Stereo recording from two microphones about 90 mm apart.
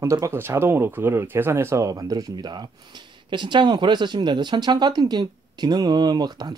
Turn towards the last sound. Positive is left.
turn(degrees=-50)  # may be behind; listen again after turning